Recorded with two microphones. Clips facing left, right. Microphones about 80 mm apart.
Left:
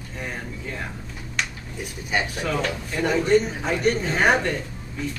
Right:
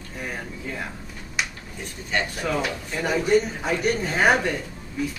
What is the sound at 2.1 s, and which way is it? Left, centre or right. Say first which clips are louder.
A woman's voice: even; centre.